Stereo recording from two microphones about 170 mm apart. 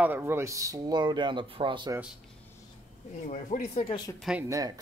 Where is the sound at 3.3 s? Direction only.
40° left (ahead or behind).